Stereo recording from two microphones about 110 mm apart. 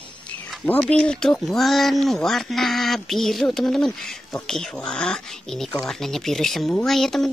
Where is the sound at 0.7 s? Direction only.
10° left (ahead or behind).